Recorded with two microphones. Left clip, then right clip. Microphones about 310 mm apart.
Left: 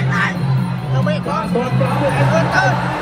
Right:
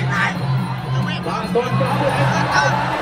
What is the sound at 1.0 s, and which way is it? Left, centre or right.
Music, centre.